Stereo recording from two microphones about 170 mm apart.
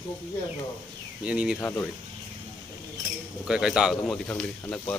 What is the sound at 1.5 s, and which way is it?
Speech, 15° left (ahead or behind).